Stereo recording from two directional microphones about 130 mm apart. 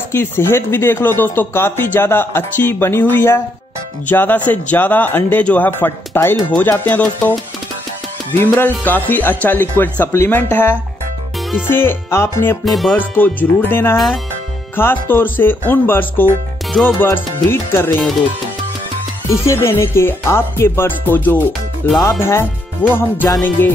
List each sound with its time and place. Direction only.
0.1 s speech: 20° left (ahead or behind)
12.6 s music: centre (ahead or behind)
12.9 s speech: 15° left (ahead or behind)
13.9 s music: centre (ahead or behind)
14.8 s speech: 15° left (ahead or behind)
19.4 s music: 20° left (ahead or behind)
21.8 s speech: 15° left (ahead or behind)